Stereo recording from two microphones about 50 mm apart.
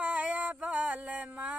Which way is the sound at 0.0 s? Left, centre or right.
Right.